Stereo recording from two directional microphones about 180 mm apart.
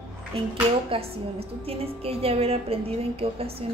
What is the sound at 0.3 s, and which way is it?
A woman's voice, 30° right (ahead or behind).